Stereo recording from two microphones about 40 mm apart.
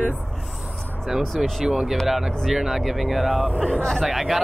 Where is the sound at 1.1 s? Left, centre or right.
Centre.